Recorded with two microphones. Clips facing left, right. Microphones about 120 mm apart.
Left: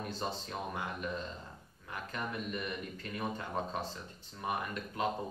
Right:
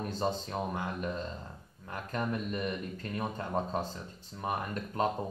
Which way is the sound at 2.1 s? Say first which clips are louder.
Right 5 dB; 35° right (ahead or behind).